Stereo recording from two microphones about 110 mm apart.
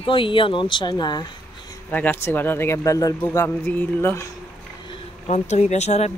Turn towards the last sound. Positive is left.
turn(degrees=90)